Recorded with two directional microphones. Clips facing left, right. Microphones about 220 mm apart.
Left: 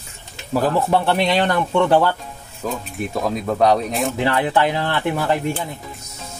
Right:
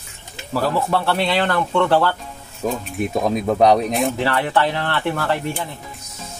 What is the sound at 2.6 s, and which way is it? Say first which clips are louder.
Speech: right 3 dB; 15° right (ahead or behind).